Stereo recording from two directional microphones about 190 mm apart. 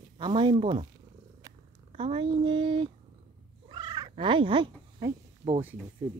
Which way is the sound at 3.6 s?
20° right (ahead or behind).